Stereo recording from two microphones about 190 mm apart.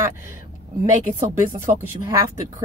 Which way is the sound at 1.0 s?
15° right (ahead or behind).